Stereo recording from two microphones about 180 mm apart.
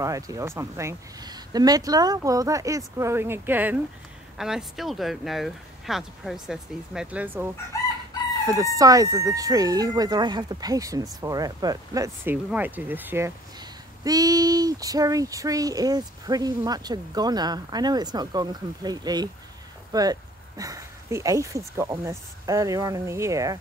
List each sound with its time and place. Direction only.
0.0 s speech: 20° right (ahead or behind)
8.7 s speech: 20° right (ahead or behind)